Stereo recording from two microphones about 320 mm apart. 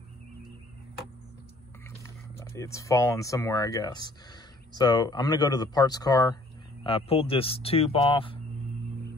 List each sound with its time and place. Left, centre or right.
2.0 s speech: centre